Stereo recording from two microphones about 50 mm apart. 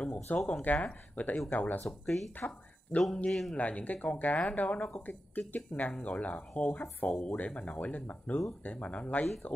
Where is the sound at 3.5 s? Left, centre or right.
Left.